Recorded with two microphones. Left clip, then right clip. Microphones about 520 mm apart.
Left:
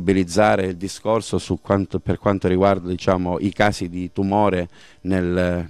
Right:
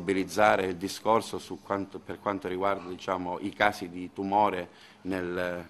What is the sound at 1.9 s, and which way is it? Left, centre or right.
Speech, left.